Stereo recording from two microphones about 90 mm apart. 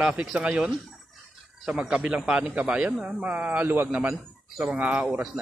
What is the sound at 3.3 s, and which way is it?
Speech, 15° right (ahead or behind).